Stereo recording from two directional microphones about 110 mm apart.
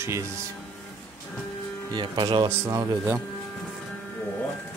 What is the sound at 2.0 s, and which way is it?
Speech, 45° right (ahead or behind).